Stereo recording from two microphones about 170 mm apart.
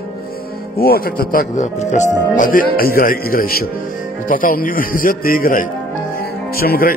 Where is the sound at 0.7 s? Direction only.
60° left (ahead or behind).